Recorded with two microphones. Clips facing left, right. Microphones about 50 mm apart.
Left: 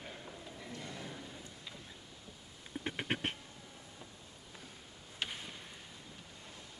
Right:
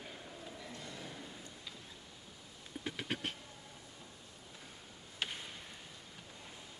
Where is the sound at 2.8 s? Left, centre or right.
Left.